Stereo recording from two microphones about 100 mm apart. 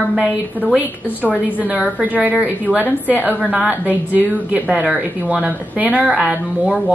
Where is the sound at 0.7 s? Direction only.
15° left (ahead or behind).